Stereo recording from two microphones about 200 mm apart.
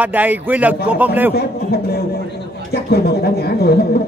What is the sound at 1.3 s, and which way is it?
Speech, 50° left (ahead or behind).